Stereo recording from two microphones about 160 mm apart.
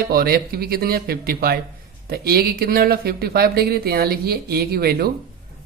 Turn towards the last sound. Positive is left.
turn(degrees=-75)  # may be behind; listen again after turning